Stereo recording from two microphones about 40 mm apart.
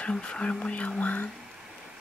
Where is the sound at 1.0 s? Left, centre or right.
Left.